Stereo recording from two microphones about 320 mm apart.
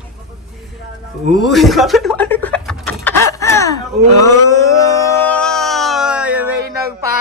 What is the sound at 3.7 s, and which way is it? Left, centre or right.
Speech, left.